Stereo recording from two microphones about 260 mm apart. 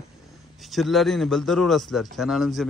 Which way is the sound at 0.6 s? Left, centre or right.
Centre.